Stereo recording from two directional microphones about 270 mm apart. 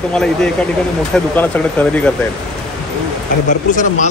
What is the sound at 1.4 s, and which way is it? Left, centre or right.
Speech, centre.